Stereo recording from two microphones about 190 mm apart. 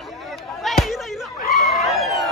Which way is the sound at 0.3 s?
Centre (ahead or behind).